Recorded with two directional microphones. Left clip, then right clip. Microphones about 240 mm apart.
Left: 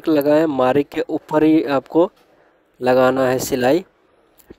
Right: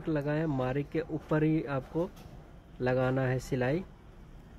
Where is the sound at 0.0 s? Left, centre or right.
Left.